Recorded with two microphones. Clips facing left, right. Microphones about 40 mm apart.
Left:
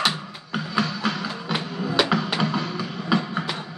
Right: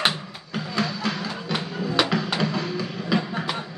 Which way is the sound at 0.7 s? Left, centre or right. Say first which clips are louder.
Left 1 dB; centre.